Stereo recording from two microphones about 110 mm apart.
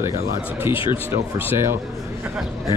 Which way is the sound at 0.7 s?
50° left (ahead or behind).